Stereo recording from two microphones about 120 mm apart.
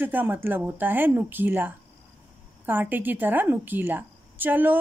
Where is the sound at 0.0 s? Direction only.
15° right (ahead or behind).